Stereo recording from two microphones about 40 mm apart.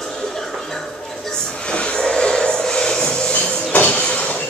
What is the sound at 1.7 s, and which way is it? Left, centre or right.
Train, centre.